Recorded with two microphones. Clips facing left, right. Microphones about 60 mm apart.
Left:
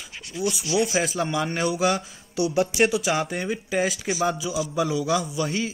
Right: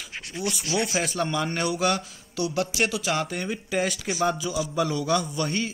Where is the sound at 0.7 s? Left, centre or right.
Centre.